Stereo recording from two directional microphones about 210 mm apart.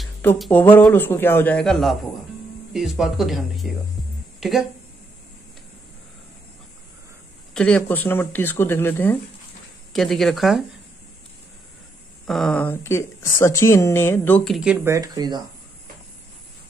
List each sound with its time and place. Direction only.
0.0 s speech: 5° left (ahead or behind)
7.5 s speech: 5° left (ahead or behind)
12.3 s speech: centre (ahead or behind)
15.0 s speech: 20° right (ahead or behind)